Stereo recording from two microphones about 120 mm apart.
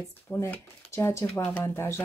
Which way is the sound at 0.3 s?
20° left (ahead or behind).